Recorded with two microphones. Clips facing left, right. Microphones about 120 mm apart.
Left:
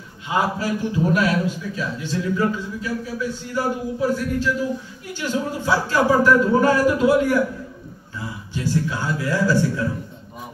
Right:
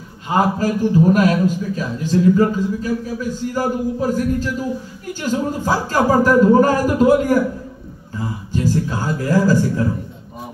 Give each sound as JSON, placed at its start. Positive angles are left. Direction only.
{"t": 0.3, "sound": "a man's voice", "side_deg": -45}